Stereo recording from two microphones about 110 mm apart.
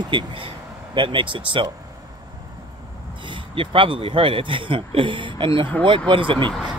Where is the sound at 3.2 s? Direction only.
50° right (ahead or behind).